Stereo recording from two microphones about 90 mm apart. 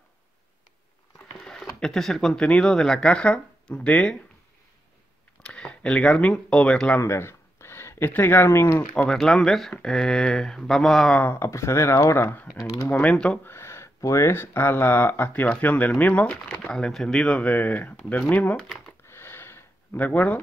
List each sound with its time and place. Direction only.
1.3 s speech: 10° left (ahead or behind)
5.4 s speech: 10° left (ahead or behind)
7.0 s speech: 30° left (ahead or behind)
8.9 s speech: 5° left (ahead or behind)
11.1 s speech: 25° left (ahead or behind)
13.0 s speech: 10° left (ahead or behind)
13.5 s speech: 30° left (ahead or behind)
19.0 s a sound: 30° left (ahead or behind)